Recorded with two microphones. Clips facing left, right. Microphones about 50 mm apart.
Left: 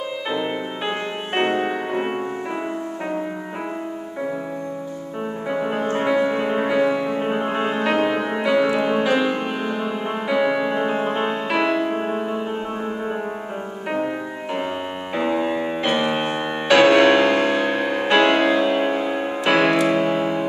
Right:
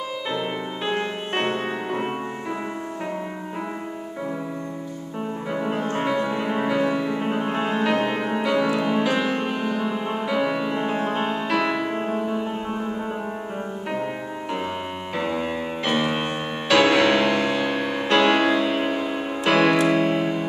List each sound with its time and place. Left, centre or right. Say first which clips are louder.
0.3 s music: left 3 dB; centre
5.5 s music: left 3 dB; centre
12.1 s music: left 1 dB; centre
15.1 s music: left 5 dB; centre